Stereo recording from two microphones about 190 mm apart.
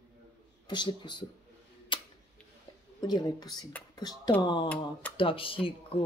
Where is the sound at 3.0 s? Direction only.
20° left (ahead or behind).